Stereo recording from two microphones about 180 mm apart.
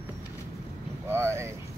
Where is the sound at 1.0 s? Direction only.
15° right (ahead or behind).